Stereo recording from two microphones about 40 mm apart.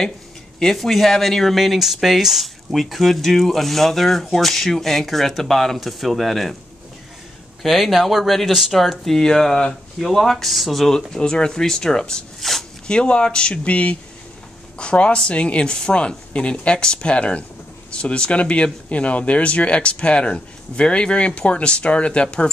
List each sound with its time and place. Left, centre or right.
0.7 s speech: centre
1.6 s speech: centre
7.6 s speech: centre
9.0 s speech: centre
9.9 s speech: centre
11.1 s speech: left
12.4 s zipper: centre
12.8 s speech: left